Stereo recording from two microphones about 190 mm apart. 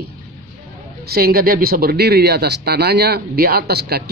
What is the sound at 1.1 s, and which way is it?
Speech, 50° right (ahead or behind).